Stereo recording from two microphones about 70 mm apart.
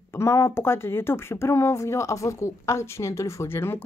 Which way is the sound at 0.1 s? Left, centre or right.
Left.